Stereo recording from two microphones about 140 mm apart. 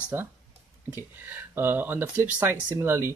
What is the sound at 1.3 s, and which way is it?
Speech, 15° right (ahead or behind).